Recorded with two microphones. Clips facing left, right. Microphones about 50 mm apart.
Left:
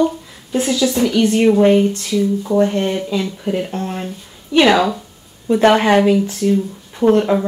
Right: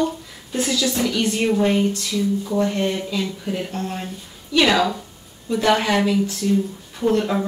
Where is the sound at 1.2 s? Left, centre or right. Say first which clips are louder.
Left 9 dB; left.